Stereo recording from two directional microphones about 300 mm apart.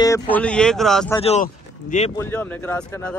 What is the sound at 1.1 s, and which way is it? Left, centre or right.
Speech, left.